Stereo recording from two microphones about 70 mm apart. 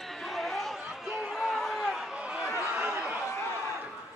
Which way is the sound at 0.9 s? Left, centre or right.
Centre.